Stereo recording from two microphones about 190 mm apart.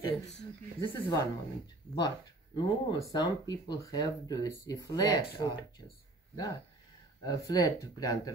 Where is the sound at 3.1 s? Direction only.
20° left (ahead or behind).